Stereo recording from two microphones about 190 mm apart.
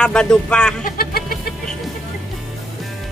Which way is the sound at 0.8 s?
50° left (ahead or behind).